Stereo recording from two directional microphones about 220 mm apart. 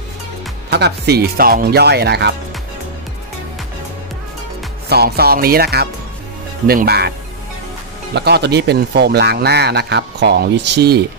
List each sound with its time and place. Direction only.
0.7 s speech: 50° right (ahead or behind)
4.8 s speech: 45° right (ahead or behind)